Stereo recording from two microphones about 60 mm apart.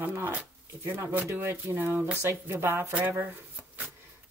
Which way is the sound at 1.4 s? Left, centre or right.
Right.